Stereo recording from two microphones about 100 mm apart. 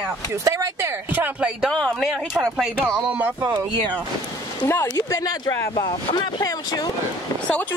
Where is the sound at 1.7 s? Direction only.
5° left (ahead or behind).